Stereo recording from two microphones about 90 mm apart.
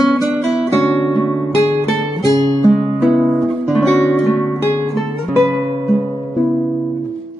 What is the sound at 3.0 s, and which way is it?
Guitar, centre (ahead or behind).